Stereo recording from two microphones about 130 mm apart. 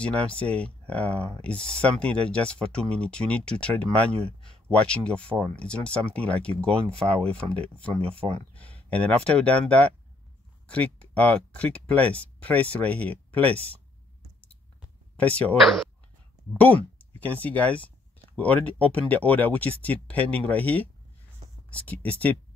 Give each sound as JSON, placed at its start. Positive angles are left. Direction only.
{"t": 0.0, "sound": "speech", "side_deg": 10}
{"t": 4.1, "sound": "speech", "side_deg": -50}
{"t": 4.7, "sound": "speech", "side_deg": 10}
{"t": 7.9, "sound": "speech", "side_deg": -50}
{"t": 8.5, "sound": "speech", "side_deg": 10}
{"t": 15.1, "sound": "speech", "side_deg": 10}
{"t": 17.2, "sound": "speech", "side_deg": 10}